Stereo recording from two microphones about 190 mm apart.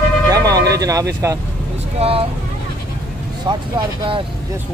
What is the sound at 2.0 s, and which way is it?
Speech, 30° right (ahead or behind).